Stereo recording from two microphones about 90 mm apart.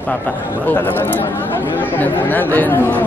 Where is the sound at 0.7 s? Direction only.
20° left (ahead or behind).